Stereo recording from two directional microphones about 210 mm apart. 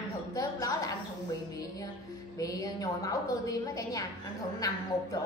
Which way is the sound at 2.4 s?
15° left (ahead or behind).